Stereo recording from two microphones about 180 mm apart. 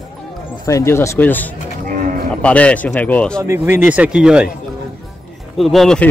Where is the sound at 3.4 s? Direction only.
10° right (ahead or behind).